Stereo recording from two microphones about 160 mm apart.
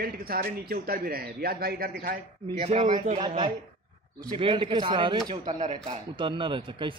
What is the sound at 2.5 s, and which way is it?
Speech, 40° right (ahead or behind).